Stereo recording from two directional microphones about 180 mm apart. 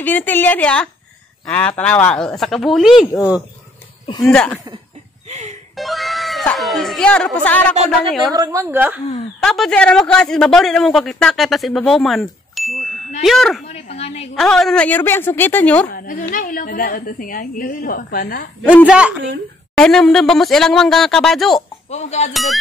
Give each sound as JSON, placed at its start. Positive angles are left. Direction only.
{"t": 0.0, "sound": "a woman's voice", "side_deg": 10}
{"t": 4.2, "sound": "speech", "side_deg": 5}
{"t": 5.3, "sound": "music", "side_deg": -40}
{"t": 5.8, "sound": "speech", "side_deg": 0}
{"t": 8.4, "sound": "a woman's voice", "side_deg": -15}
{"t": 9.4, "sound": "speech", "side_deg": 0}
{"t": 13.7, "sound": "a woman's voice", "side_deg": 35}
{"t": 14.3, "sound": "a woman's voice", "side_deg": 0}
{"t": 15.9, "sound": "a woman's voice", "side_deg": 50}
{"t": 18.9, "sound": "a woman's voice", "side_deg": -5}
{"t": 21.9, "sound": "a woman's voice", "side_deg": 40}
{"t": 22.3, "sound": "speech", "side_deg": 0}